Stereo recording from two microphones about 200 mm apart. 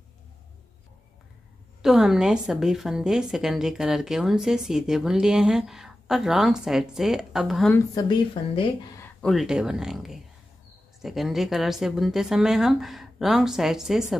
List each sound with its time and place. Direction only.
1.8 s a woman's voice: centre (ahead or behind)
7.9 s speech: 20° left (ahead or behind)
9.0 s a woman's voice: centre (ahead or behind)